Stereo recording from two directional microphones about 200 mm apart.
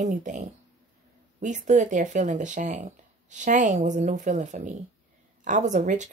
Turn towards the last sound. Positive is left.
turn(degrees=-40)  # may be behind; listen again after turning